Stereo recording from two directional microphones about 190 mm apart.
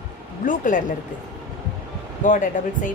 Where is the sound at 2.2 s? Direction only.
40° left (ahead or behind).